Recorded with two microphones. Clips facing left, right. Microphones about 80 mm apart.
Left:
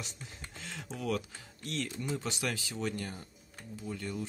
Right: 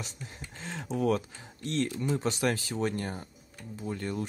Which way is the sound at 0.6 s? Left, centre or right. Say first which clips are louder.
Right 5 dB; right.